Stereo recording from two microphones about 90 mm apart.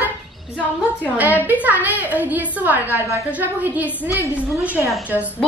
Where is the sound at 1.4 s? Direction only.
20° right (ahead or behind).